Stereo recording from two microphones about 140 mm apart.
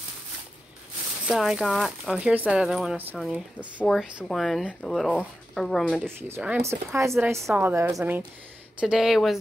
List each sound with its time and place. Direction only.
1.2 s speech: centre (ahead or behind)
2.1 s a woman's voice: 10° right (ahead or behind)
6.1 s a woman's voice: 15° right (ahead or behind)